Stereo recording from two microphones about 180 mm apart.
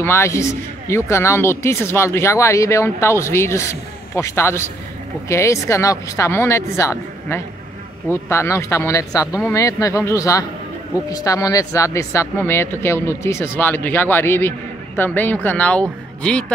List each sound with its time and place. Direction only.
0.0 s a man's voice: 15° left (ahead or behind)